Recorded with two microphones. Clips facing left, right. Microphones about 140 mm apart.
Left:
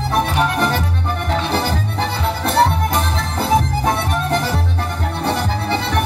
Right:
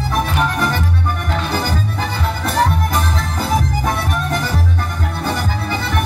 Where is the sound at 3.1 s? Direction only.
30° left (ahead or behind).